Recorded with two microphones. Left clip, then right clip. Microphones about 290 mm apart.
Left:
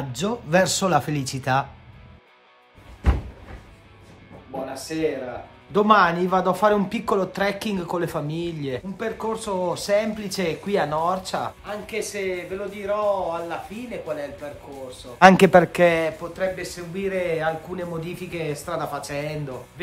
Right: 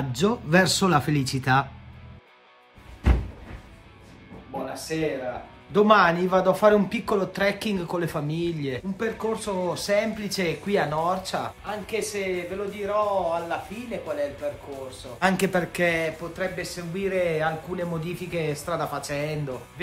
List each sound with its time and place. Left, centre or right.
0.2 s speech: centre
4.5 s music: centre
4.9 s a man's voice: centre
15.1 s a man's voice: left
16.3 s a man's voice: centre